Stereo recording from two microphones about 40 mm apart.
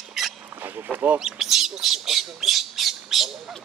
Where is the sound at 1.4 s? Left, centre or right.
Centre.